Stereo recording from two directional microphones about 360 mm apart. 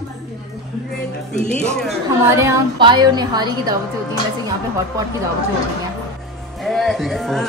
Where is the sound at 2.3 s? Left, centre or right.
Centre.